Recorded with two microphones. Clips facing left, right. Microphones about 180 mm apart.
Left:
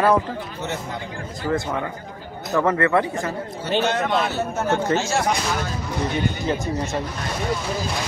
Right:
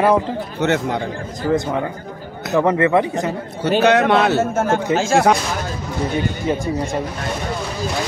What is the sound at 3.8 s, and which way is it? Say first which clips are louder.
Speech: right 10 dB; 70° right (ahead or behind).